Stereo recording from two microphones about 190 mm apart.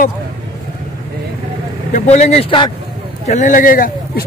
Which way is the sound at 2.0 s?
35° left (ahead or behind).